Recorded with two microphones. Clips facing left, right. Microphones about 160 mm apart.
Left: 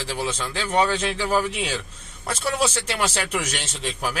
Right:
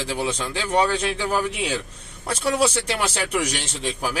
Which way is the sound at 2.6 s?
10° right (ahead or behind).